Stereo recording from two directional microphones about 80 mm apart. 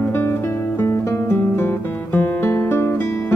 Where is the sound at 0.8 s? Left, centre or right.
Left.